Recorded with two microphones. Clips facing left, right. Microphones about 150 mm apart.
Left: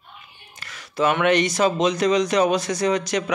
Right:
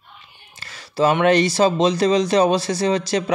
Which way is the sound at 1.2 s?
35° right (ahead or behind).